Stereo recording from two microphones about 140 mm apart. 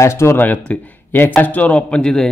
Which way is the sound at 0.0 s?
20° left (ahead or behind).